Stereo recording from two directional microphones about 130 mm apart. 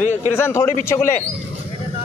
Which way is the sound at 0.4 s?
20° left (ahead or behind).